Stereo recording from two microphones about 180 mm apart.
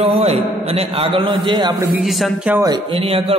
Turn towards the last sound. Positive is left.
turn(degrees=-30)  # may be behind; listen again after turning